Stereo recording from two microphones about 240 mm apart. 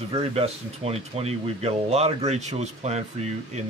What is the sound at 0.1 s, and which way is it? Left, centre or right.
Speech, right.